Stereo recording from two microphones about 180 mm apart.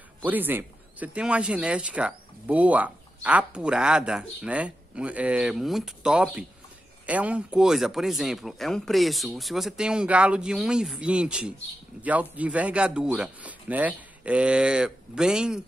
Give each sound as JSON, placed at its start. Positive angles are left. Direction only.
{"t": 0.2, "sound": "speech", "side_deg": -10}